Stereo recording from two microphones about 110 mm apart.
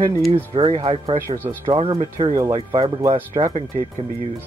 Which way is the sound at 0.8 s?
60° right (ahead or behind).